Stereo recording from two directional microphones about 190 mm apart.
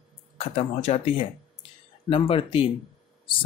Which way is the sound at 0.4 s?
35° left (ahead or behind).